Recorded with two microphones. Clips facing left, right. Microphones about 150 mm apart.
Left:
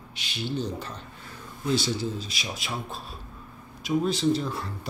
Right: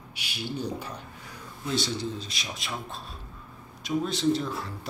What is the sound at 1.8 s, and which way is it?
Speech, 5° left (ahead or behind).